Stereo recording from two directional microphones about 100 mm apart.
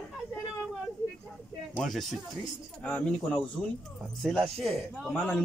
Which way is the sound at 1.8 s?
Centre (ahead or behind).